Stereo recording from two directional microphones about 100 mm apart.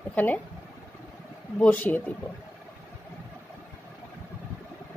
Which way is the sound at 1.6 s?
15° left (ahead or behind).